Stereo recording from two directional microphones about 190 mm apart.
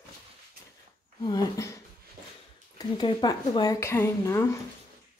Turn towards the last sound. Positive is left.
turn(degrees=15)  # may be behind; listen again after turning